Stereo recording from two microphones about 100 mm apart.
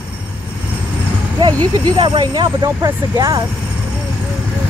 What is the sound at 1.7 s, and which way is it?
Speech, 45° right (ahead or behind).